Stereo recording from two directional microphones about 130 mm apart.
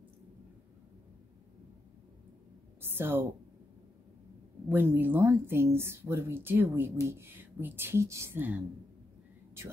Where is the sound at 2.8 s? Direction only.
15° right (ahead or behind).